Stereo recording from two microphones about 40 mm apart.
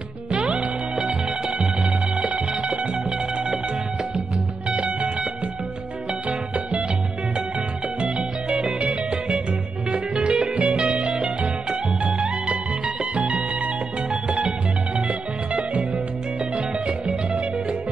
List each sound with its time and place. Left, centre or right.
0.3 s music: right
0.9 s music: centre
2.1 s music: right
6.2 s music: right
8.7 s music: right